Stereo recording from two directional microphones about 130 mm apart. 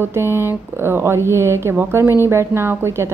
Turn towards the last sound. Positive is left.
turn(degrees=-20)  # may be behind; listen again after turning